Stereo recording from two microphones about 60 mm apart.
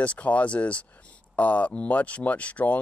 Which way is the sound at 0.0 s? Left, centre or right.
Left.